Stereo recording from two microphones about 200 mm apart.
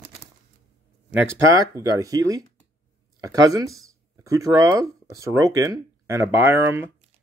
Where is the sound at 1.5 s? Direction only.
15° right (ahead or behind).